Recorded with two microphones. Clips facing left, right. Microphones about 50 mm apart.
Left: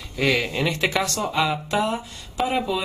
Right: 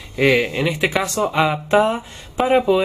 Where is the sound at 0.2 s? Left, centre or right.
Right.